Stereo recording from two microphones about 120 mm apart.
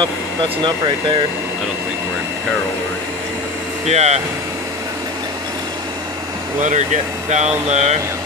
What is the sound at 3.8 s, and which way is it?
Speech, 65° right (ahead or behind).